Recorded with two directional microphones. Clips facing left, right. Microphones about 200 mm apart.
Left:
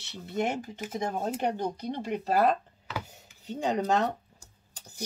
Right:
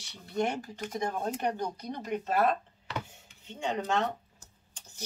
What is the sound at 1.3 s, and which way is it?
Speech, 10° left (ahead or behind).